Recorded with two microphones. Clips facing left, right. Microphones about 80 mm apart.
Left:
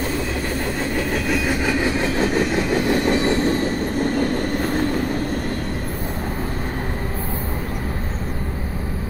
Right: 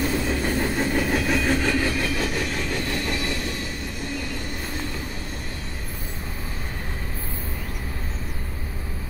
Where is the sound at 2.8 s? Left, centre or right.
Left.